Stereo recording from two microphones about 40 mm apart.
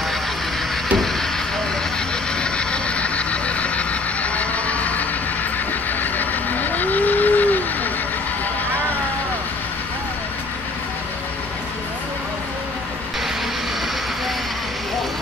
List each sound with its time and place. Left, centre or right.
2.3 s vehicle: left
5.7 s cattle: left